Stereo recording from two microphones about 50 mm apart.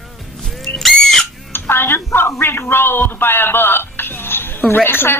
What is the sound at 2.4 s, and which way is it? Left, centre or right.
A man's voice, left.